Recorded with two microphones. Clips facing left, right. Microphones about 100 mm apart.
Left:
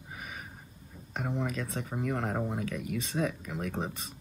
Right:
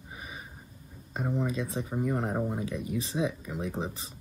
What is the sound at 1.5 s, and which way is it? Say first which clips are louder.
Speech: right 3 dB; 10° right (ahead or behind).